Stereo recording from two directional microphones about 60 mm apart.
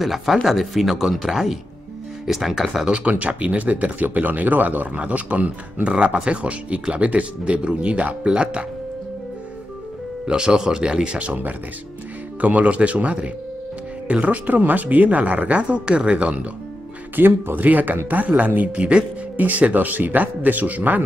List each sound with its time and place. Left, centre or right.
0.0 s speech: centre
2.8 s speech: centre
10.2 s speech: centre
17.1 s speech: right